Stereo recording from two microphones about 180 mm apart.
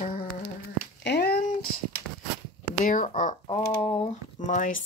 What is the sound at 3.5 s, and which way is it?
Speech, 30° left (ahead or behind).